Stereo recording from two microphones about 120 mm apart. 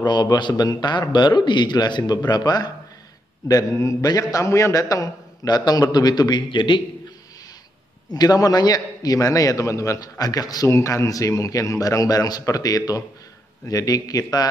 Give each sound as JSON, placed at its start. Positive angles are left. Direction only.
{"t": 0.0, "sound": "a man's voice", "side_deg": 35}
{"t": 8.1, "sound": "a man's voice", "side_deg": 35}